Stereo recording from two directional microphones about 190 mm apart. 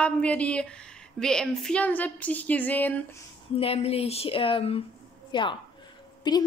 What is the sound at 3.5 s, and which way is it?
A woman's voice, 30° left (ahead or behind).